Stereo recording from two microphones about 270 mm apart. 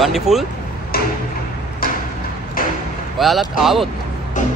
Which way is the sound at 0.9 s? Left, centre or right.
Left.